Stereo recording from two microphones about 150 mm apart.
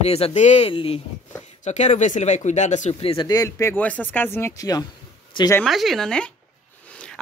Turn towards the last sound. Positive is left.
turn(degrees=5)  # may be behind; listen again after turning